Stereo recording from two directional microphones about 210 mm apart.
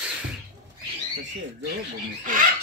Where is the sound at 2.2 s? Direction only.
40° right (ahead or behind).